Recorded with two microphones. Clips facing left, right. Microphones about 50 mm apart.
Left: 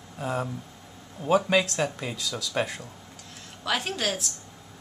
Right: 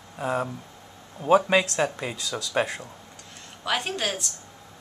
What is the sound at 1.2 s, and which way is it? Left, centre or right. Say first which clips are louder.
A woman's voice: right 3 dB; centre.